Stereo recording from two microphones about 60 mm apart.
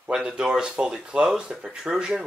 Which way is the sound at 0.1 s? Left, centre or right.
Centre.